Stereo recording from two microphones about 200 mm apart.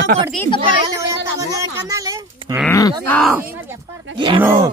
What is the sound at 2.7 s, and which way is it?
Speech, 15° left (ahead or behind).